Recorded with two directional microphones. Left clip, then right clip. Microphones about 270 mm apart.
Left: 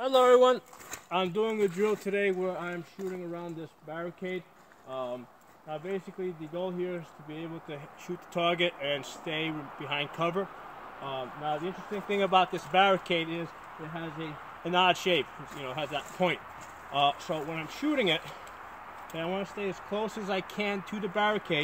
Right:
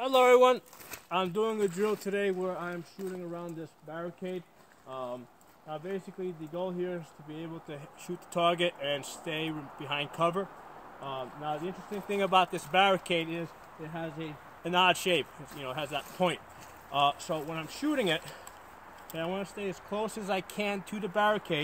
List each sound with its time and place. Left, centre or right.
0.0 s speech: right
1.1 s speech: centre
3.9 s speech: centre
6.5 s speech: centre